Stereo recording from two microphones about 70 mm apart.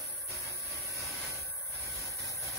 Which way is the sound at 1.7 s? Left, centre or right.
Left.